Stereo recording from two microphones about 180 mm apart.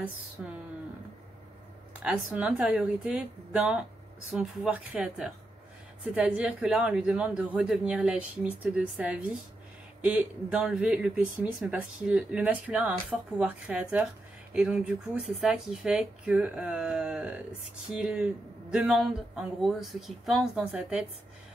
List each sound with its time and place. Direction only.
0.4 s speech: 5° right (ahead or behind)
2.0 s speech: 5° right (ahead or behind)